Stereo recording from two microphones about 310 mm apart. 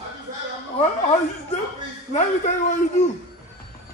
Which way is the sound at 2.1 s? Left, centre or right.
Left.